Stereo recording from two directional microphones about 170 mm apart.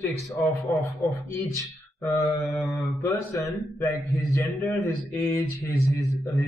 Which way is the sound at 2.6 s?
20° left (ahead or behind).